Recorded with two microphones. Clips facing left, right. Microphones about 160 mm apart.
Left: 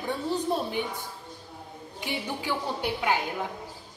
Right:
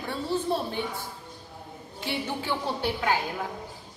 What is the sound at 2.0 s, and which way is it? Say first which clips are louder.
A woman's voice: right 1 dB; 15° left (ahead or behind).